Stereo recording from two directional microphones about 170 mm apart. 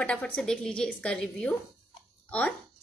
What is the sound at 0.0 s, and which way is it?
A woman's voice, 5° left (ahead or behind).